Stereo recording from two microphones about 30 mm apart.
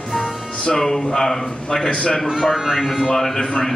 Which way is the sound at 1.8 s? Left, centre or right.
Left.